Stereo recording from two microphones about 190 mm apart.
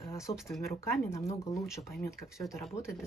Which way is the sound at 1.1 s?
15° left (ahead or behind).